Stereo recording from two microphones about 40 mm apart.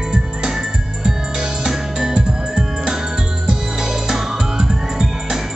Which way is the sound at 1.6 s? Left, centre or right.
Centre.